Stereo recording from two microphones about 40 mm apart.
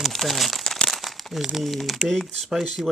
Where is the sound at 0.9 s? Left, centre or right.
Centre.